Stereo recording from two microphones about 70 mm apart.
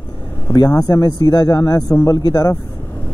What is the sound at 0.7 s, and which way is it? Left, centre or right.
Speech, left.